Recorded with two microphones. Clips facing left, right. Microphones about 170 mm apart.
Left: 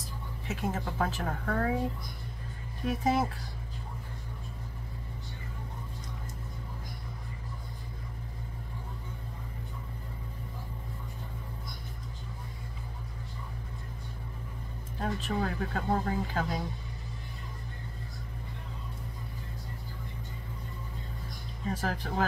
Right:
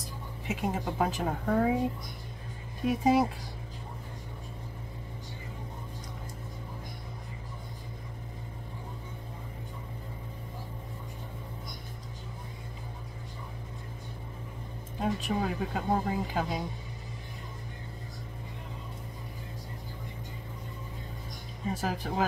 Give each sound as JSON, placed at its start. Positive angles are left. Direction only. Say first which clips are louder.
{"t": 0.5, "sound": "speech", "louder": "right 2 dB", "side_deg": -15}
{"t": 2.9, "sound": "speech", "louder": "right 4 dB", "side_deg": -10}
{"t": 15.0, "sound": "speech", "louder": "right 2 dB", "side_deg": -10}
{"t": 21.6, "sound": "speech", "louder": "right 1 dB", "side_deg": -10}